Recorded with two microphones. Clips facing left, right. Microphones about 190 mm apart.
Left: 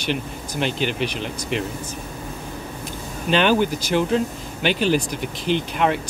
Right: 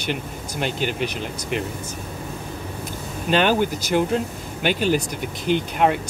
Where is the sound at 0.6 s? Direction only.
45° right (ahead or behind).